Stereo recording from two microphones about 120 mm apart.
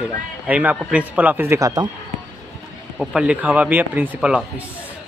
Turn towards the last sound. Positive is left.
turn(degrees=-10)  # may be behind; listen again after turning